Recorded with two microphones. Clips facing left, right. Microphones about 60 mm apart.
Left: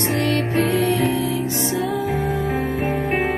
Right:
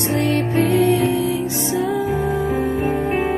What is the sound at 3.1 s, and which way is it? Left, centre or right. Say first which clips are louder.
Music: right 1 dB; left.